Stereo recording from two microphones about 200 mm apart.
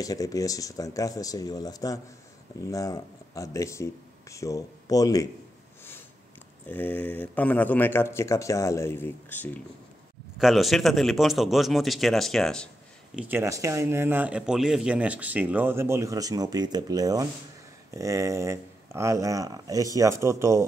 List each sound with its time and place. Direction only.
0.0 s speech: 15° left (ahead or behind)
6.7 s speech: 10° left (ahead or behind)
13.1 s speech: 10° right (ahead or behind)